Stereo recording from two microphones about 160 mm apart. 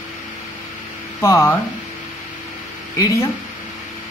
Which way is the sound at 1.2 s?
20° left (ahead or behind).